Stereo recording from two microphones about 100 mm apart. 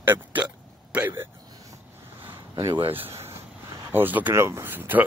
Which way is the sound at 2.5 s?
45° right (ahead or behind).